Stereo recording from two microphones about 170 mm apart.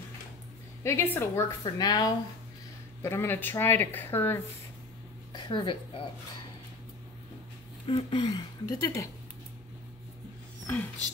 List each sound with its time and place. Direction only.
0.8 s speech: 15° left (ahead or behind)
5.3 s speech: 25° left (ahead or behind)
7.8 s speech: 30° left (ahead or behind)